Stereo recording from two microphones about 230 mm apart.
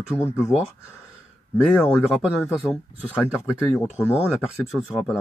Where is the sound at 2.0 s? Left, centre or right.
Centre.